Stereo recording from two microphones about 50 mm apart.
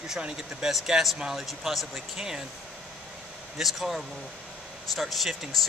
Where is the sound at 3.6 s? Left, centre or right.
Centre.